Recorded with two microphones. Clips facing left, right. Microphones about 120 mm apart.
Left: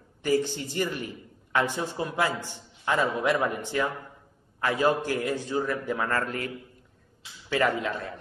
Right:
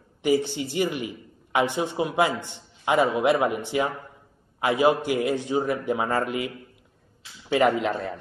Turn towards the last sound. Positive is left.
turn(degrees=-20)  # may be behind; listen again after turning